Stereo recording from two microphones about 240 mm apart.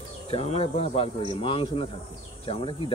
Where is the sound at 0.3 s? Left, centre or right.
Left.